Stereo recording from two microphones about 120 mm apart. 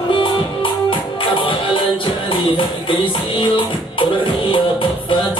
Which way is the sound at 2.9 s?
45° left (ahead or behind).